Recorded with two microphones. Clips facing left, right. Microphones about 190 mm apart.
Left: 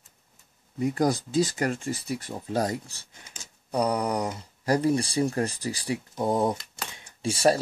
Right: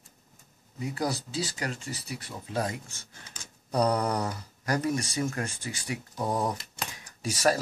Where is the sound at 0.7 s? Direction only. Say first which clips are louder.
Left 7 dB; 50° left (ahead or behind).